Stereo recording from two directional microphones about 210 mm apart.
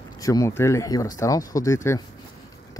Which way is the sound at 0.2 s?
15° left (ahead or behind).